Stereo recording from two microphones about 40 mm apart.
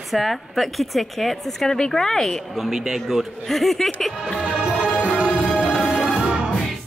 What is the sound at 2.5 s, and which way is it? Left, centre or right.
Speech, centre.